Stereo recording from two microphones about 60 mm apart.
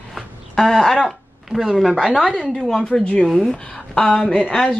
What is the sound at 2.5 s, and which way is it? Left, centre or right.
A woman's voice, centre.